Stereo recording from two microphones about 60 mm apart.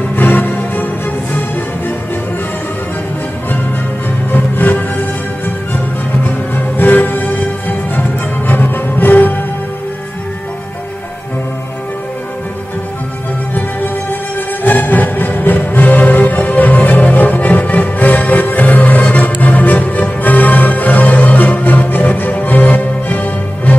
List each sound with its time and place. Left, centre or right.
0.1 s music: left
4.3 s music: left
6.2 s music: left
14.6 s music: left